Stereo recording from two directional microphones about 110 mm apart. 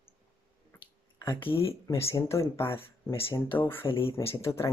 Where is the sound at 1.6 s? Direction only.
25° left (ahead or behind).